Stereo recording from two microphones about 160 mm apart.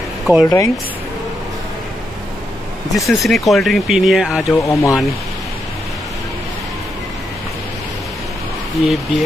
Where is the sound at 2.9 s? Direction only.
Centre (ahead or behind).